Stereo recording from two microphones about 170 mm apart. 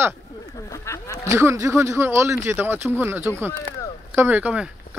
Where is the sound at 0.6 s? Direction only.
20° left (ahead or behind).